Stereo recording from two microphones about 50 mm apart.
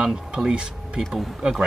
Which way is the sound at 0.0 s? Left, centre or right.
Centre.